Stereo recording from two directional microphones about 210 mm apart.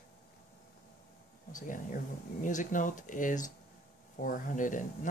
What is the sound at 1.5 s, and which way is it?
Speech, 40° left (ahead or behind).